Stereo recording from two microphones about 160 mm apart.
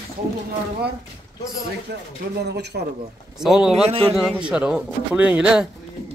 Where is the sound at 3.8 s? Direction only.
35° right (ahead or behind).